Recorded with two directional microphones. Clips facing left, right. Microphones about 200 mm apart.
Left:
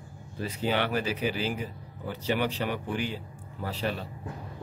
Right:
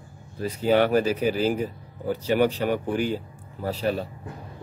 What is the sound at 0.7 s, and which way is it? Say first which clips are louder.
Speech: right 9 dB; 45° right (ahead or behind).